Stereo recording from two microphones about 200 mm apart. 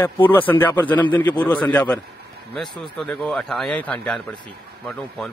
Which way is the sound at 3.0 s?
Centre (ahead or behind).